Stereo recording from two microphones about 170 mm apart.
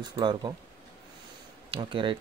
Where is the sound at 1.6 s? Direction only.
30° right (ahead or behind).